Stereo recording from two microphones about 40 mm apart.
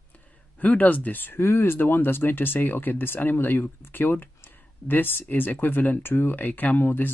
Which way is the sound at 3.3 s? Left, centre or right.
Left.